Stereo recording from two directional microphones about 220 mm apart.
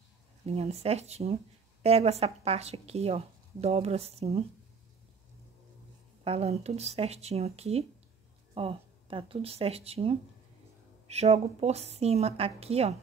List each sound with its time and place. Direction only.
0.5 s speech: 30° right (ahead or behind)
6.2 s speech: 30° right (ahead or behind)